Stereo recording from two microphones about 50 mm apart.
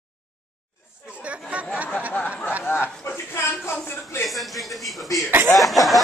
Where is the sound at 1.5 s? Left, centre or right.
Right.